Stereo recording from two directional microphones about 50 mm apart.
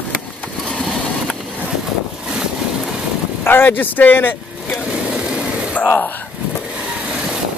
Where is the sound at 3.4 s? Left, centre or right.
Left.